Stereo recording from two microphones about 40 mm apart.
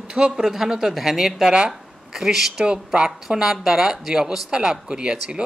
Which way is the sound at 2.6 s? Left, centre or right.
Right.